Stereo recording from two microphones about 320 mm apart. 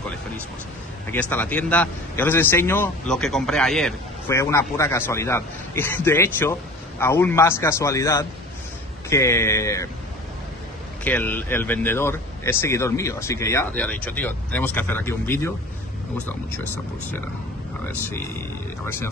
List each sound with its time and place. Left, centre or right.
1.3 s a man's voice: centre
11.1 s a man's voice: centre